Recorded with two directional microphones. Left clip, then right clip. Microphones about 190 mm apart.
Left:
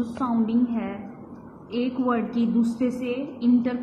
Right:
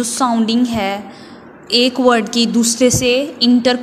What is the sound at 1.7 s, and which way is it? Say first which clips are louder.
A woman's voice: right 14 dB; 40° right (ahead or behind).